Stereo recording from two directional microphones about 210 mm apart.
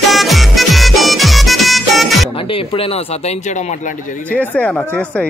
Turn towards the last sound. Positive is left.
turn(degrees=5)  # may be behind; listen again after turning